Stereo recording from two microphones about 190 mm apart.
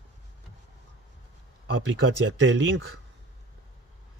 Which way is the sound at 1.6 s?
75° right (ahead or behind).